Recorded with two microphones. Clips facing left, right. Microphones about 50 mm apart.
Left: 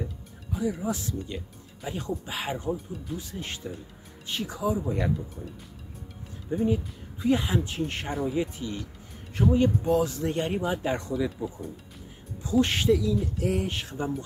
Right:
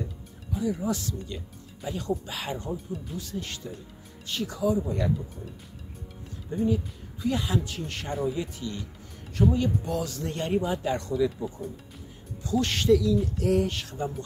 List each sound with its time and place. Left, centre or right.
0.5 s speech: centre
0.8 s speech: centre
6.5 s speech: left
10.9 s speech: left
11.1 s speech: centre
12.4 s speech: left